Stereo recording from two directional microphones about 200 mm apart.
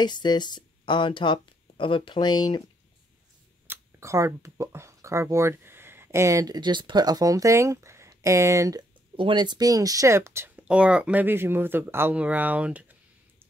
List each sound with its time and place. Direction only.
0.0 s speech: 20° left (ahead or behind)
3.6 s speech: 10° right (ahead or behind)